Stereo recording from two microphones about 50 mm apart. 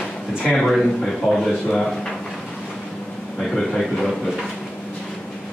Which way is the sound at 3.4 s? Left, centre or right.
Centre.